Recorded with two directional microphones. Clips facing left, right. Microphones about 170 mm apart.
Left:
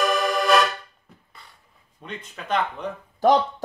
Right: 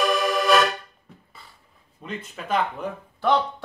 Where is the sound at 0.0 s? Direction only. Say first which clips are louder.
Even; centre (ahead or behind).